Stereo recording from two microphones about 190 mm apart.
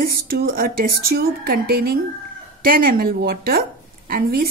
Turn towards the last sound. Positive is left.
turn(degrees=-55)  # may be behind; listen again after turning